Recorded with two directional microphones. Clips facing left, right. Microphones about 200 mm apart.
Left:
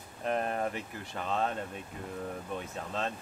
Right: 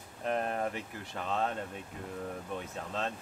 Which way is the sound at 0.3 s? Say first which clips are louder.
Left 1 dB; 20° left (ahead or behind).